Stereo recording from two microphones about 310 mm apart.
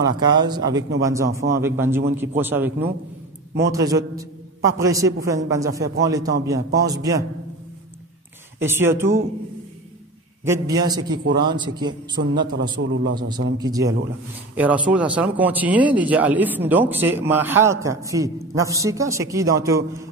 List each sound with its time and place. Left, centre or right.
0.2 s speech: centre
8.5 s speech: centre
10.4 s speech: centre
12.4 s a man's voice: right
13.6 s speech: centre